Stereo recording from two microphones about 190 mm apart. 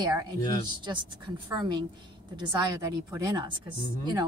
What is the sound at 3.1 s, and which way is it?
Speech, 20° right (ahead or behind).